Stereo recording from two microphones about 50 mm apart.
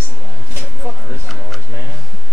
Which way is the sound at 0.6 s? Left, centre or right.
Right.